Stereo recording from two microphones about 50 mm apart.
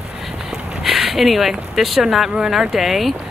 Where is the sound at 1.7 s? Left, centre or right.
Centre.